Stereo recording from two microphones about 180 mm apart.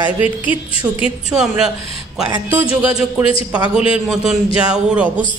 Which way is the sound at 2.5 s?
30° left (ahead or behind).